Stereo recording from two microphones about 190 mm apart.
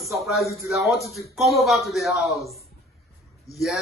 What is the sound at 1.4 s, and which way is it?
Speech, centre (ahead or behind).